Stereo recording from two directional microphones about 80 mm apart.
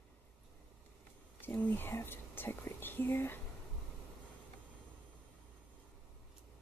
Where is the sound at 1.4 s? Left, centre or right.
Left.